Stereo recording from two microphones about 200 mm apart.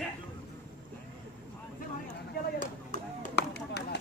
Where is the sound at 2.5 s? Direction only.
40° left (ahead or behind).